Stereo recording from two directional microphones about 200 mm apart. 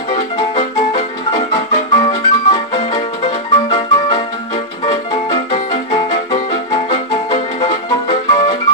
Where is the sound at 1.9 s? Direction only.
20° left (ahead or behind).